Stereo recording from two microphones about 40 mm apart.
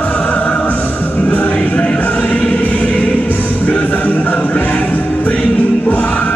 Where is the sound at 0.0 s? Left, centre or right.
Left.